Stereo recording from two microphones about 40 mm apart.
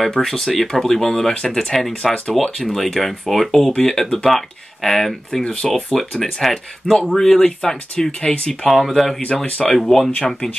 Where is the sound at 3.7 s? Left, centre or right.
Centre.